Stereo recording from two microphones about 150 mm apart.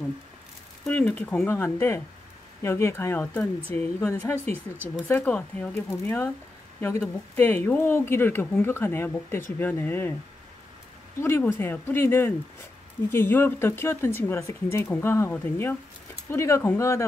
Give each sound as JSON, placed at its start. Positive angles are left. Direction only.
{"t": 0.8, "sound": "speech", "side_deg": 10}
{"t": 11.1, "sound": "speech", "side_deg": 15}